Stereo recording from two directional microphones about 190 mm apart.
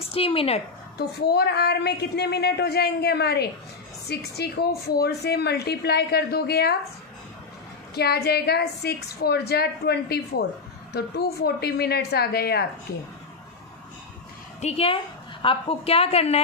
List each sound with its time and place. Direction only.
0.1 s a woman's voice: 30° left (ahead or behind)
0.9 s a woman's voice: 60° left (ahead or behind)
7.9 s a woman's voice: 60° left (ahead or behind)
14.6 s a woman's voice: 30° left (ahead or behind)